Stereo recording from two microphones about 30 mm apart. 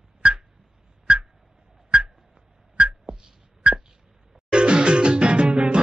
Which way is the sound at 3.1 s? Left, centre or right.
Right.